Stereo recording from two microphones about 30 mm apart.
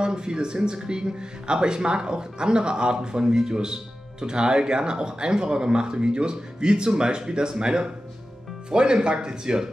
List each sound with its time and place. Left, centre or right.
0.0 s speech: right